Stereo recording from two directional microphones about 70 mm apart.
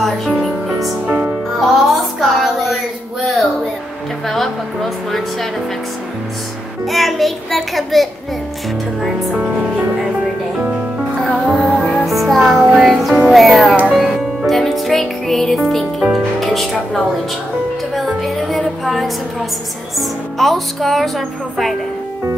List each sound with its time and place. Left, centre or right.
0.0 s music: centre
1.0 s music: centre
1.6 s music: centre
4.3 s speech: centre
6.9 s speech: centre
11.5 s music: centre
16.3 s speech: centre
17.9 s music: centre
20.0 s speech: centre